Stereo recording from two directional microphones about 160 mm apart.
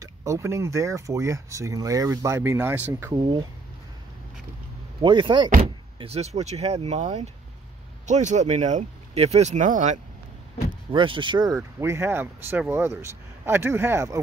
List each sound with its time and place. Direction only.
0.0 s speech: 20° right (ahead or behind)
5.0 s speech: 30° right (ahead or behind); by 9.9 s 50° right (ahead or behind)
10.9 s speech: 30° right (ahead or behind)
11.8 s speech: 15° right (ahead or behind)